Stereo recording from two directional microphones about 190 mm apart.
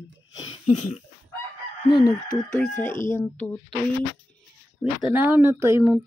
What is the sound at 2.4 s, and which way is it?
Speech, 5° left (ahead or behind).